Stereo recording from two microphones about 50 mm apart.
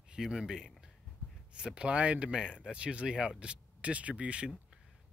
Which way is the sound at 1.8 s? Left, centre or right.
Right.